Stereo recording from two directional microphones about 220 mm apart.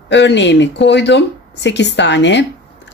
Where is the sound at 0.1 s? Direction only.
55° left (ahead or behind).